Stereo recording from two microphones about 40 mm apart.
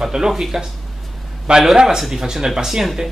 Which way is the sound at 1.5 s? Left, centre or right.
Right.